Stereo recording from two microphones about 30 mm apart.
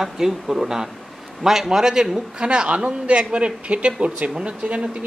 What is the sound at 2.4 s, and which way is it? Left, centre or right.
A man's voice, right.